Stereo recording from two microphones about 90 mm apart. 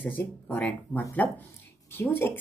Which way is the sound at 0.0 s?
15° left (ahead or behind).